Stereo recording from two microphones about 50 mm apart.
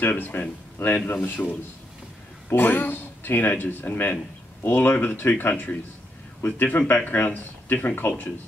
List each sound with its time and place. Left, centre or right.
0.0 s speech: left
0.8 s speech: left
1.1 s speech: left
2.5 s speech: left